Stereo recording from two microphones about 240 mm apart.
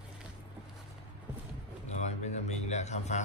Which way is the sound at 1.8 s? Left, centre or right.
Left.